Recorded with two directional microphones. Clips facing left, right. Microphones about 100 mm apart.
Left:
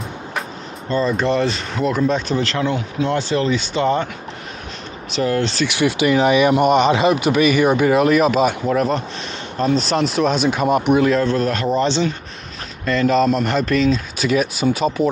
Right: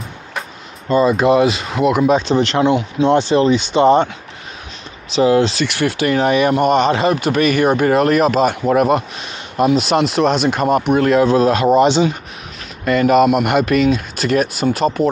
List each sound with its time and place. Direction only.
0.8 s speech: 15° right (ahead or behind)
5.1 s speech: 15° right (ahead or behind)
5.6 s speech: 5° left (ahead or behind)
8.6 s speech: 10° right (ahead or behind)
11.1 s speech: 10° right (ahead or behind)